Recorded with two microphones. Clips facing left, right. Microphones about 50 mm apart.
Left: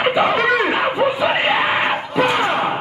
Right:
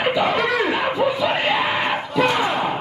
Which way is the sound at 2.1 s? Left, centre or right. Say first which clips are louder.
Left 1 dB; centre.